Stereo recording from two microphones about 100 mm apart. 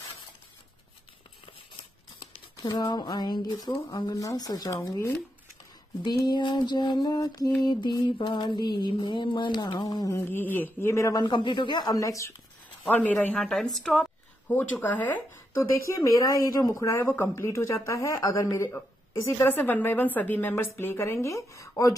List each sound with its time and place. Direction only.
2.5 s mantra: 50° left (ahead or behind)
4.1 s speech: 35° left (ahead or behind)
6.0 s mantra: 50° left (ahead or behind)
10.1 s a woman's voice: 20° left (ahead or behind)
11.2 s mantra: 50° left (ahead or behind); by 12.3 s 35° left (ahead or behind)
12.8 s a woman's voice: 15° left (ahead or behind)
14.5 s a woman's voice: 20° left (ahead or behind)
15.9 s speech: 30° left (ahead or behind)
18.7 s a woman's voice: 20° left (ahead or behind)